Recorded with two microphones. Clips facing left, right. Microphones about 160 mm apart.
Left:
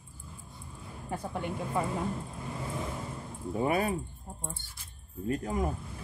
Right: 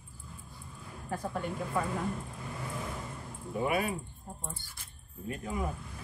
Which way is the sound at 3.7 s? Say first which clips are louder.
Left 2 dB; 35° left (ahead or behind).